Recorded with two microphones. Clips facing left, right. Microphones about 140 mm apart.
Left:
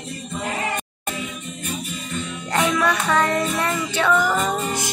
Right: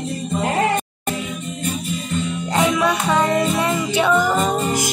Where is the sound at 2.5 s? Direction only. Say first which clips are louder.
Right 2 dB; 15° right (ahead or behind).